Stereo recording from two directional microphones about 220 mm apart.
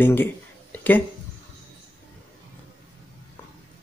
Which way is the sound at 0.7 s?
10° left (ahead or behind).